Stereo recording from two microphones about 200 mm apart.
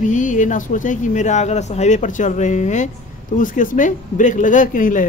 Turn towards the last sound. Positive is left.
turn(degrees=40)  # may be behind; listen again after turning